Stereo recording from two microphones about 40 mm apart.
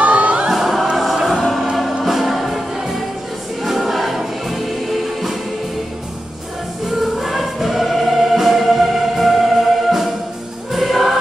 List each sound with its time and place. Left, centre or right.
0.0 s choir: right
0.5 s music: centre
3.6 s music: centre
6.9 s choir: centre
10.7 s music: centre